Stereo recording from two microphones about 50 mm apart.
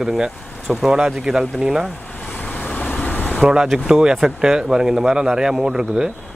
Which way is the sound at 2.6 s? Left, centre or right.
Left.